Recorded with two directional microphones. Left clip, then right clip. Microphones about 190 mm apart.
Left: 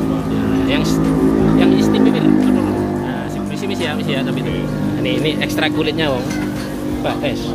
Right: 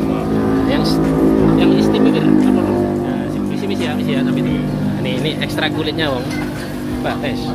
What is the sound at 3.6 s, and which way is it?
Music, 15° left (ahead or behind).